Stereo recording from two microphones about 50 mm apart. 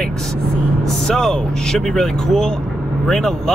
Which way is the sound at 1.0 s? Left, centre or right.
Centre.